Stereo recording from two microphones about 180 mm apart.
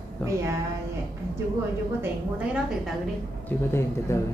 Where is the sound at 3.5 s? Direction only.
10° left (ahead or behind).